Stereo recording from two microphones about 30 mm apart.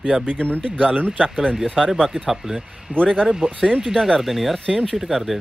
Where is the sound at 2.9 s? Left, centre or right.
Right.